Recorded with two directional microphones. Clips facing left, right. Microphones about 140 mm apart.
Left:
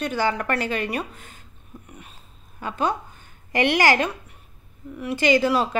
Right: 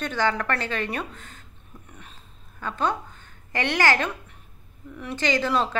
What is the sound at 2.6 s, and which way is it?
Speech, 10° left (ahead or behind).